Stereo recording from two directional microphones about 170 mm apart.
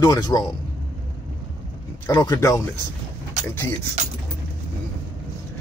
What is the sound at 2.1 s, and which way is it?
Speech, 20° left (ahead or behind).